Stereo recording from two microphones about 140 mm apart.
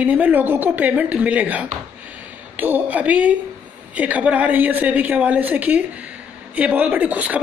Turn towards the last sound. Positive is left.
turn(degrees=-10)  # may be behind; listen again after turning